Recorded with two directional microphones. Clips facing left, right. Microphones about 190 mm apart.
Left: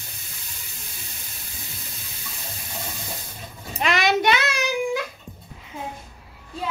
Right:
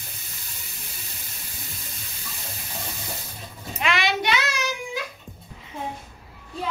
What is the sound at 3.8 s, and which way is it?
Child singing, 45° left (ahead or behind).